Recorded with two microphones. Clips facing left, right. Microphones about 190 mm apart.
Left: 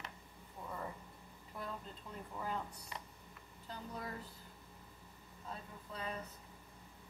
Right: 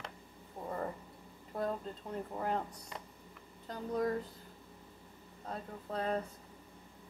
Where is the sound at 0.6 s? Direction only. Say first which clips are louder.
Right 7 dB; 40° right (ahead or behind).